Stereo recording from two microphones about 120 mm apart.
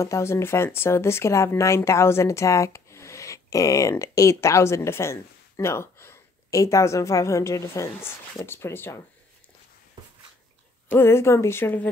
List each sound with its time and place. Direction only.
0.0 s speech: 25° left (ahead or behind)
10.9 s speech: 20° left (ahead or behind)